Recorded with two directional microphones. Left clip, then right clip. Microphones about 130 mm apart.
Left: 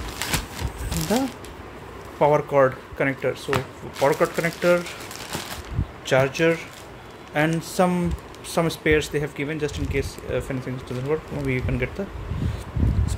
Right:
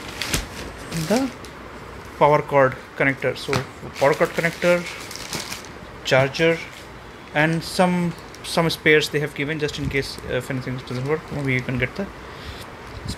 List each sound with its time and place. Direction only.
1.1 s speech: 5° left (ahead or behind)
6.0 s speech: 10° left (ahead or behind)
7.3 s speech: 5° left (ahead or behind)